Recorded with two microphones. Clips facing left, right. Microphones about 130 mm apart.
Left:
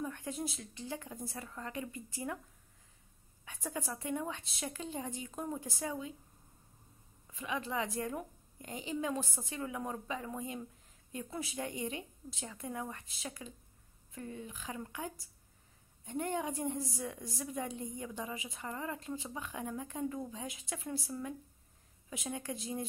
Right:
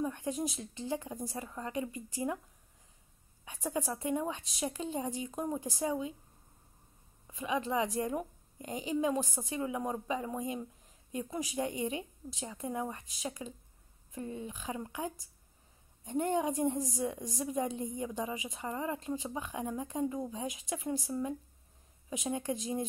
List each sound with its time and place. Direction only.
0.0 s a woman's voice: 15° right (ahead or behind)
3.4 s a woman's voice: 15° right (ahead or behind)
7.2 s a woman's voice: 20° right (ahead or behind)